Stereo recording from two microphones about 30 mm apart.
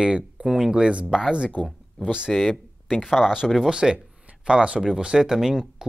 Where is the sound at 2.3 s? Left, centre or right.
Centre.